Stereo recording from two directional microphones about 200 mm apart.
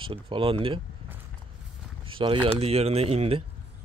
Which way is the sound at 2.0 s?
25° right (ahead or behind).